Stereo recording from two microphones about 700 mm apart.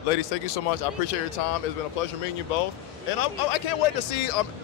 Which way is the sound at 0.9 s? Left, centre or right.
Left.